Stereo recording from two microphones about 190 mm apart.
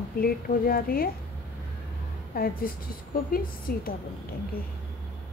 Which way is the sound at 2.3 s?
50° left (ahead or behind).